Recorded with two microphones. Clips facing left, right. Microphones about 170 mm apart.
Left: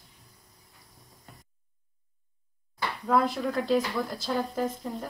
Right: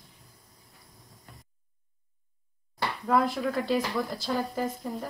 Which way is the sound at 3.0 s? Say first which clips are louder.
Even; centre (ahead or behind).